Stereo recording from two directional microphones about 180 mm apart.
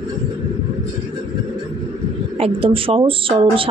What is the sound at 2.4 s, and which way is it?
Speech, 30° right (ahead or behind).